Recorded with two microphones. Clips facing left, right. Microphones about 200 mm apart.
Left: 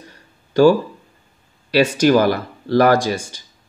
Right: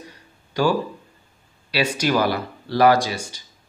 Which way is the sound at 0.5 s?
45° left (ahead or behind).